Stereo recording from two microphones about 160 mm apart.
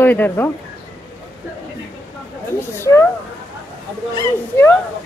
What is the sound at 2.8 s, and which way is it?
Speech, 15° left (ahead or behind).